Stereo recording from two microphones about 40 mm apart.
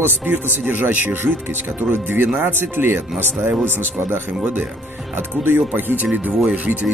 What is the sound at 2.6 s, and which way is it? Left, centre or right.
Speech, right.